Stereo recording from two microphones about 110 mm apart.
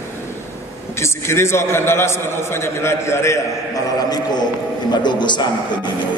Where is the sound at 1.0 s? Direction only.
25° left (ahead or behind).